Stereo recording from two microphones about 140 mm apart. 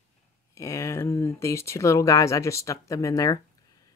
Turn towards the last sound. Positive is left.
turn(degrees=25)  # may be behind; listen again after turning